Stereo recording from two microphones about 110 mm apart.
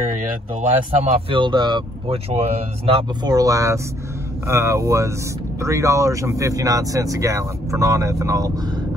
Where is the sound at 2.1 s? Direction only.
70° right (ahead or behind).